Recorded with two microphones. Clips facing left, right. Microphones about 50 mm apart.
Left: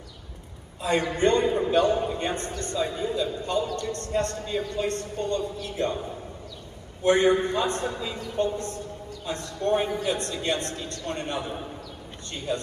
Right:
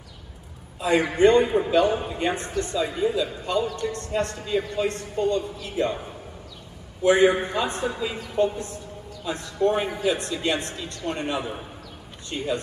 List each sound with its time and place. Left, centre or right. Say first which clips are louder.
0.8 s a man's voice: right 4 dB; right
7.0 s a man's voice: right 2 dB; right
8.5 s speech: left 1 dB; left
9.6 s a man's voice: right 2 dB; right